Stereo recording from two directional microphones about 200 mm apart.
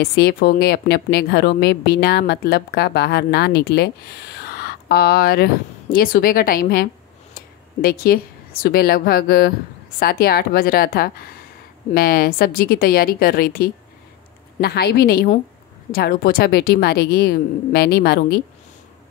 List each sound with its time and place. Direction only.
0.0 s a woman's voice: 55° left (ahead or behind)